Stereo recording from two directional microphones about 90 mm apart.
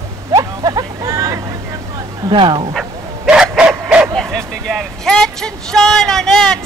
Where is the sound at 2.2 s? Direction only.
65° right (ahead or behind).